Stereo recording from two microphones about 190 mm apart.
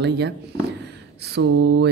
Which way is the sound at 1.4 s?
75° right (ahead or behind).